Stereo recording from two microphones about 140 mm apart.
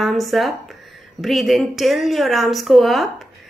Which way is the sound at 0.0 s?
Centre (ahead or behind).